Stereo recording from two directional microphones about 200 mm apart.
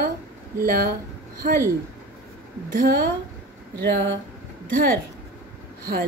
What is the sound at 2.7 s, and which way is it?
Speech, 45° right (ahead or behind).